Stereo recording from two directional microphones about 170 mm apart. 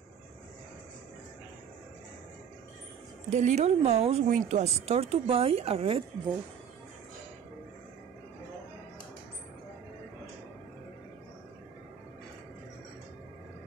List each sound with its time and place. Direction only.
3.3 s speech: 40° right (ahead or behind)